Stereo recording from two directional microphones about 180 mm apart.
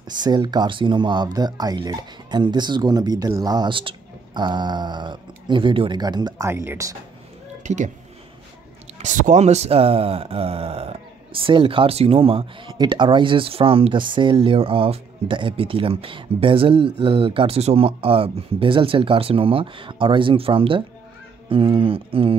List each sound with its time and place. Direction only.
0.2 s speech: 25° right (ahead or behind)
7.6 s speech: 40° right (ahead or behind)
8.9 s speech: 45° right (ahead or behind)